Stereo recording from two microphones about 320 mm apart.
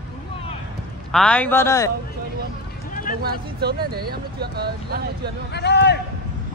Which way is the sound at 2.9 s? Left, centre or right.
Left.